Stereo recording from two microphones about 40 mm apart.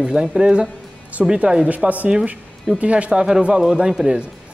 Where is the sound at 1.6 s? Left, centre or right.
Right.